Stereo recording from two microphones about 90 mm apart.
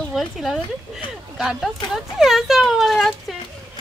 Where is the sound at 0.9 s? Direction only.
10° right (ahead or behind).